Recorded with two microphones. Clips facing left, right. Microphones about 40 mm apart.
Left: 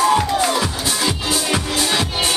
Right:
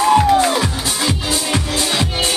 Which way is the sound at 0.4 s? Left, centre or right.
Centre.